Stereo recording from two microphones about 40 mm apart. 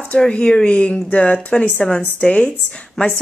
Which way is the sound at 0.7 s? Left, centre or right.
Left.